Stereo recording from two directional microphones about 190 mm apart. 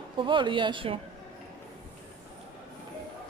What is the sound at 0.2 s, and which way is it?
Speech, 25° right (ahead or behind).